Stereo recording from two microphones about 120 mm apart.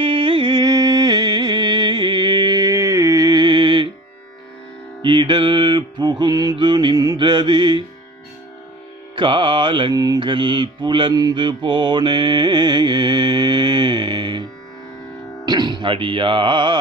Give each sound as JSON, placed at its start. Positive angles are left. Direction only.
{"t": 0.0, "sound": "music", "side_deg": -45}
{"t": 5.0, "sound": "mantra", "side_deg": -45}
{"t": 9.1, "sound": "music", "side_deg": -40}
{"t": 9.9, "sound": "mantra", "side_deg": -35}
{"t": 15.4, "sound": "speech", "side_deg": -35}